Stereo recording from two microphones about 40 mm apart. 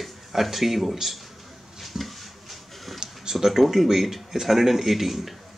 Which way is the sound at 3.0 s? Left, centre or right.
Centre.